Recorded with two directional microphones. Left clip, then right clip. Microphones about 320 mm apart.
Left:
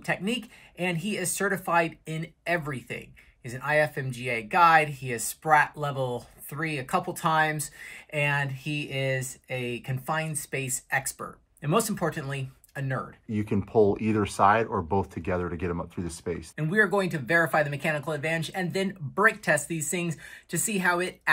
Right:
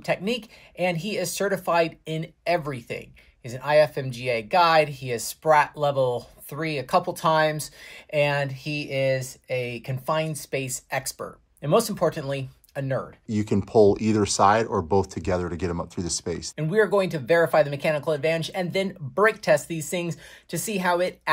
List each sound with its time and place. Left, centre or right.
0.0 s speech: right
13.3 s speech: centre
16.5 s speech: right